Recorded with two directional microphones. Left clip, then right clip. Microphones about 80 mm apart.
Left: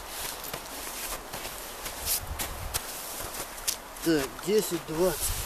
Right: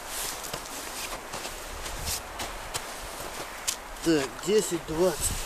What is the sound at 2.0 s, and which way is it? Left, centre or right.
Walk, left.